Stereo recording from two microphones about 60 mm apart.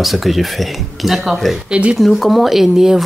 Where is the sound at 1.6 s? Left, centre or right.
Centre.